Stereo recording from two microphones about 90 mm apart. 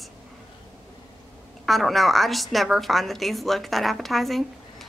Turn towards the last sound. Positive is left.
turn(degrees=0)  # may be behind; listen again after turning